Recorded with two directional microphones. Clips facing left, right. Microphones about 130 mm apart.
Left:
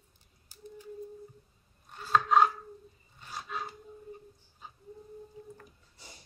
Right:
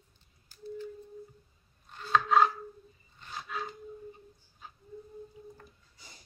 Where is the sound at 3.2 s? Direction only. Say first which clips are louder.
Even; 10° left (ahead or behind).